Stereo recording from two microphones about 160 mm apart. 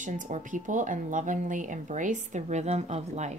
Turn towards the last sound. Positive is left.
turn(degrees=-45)  # may be behind; listen again after turning